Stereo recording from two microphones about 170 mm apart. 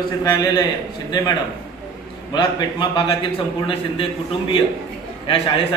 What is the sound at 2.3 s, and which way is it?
Speech, 25° left (ahead or behind).